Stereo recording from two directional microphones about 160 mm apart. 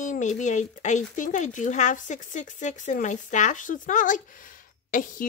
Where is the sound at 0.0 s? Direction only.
50° left (ahead or behind).